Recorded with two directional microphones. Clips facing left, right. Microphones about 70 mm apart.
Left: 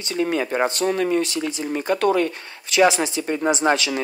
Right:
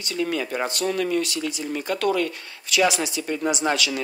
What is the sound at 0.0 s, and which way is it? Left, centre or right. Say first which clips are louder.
Speech: left 3 dB; left.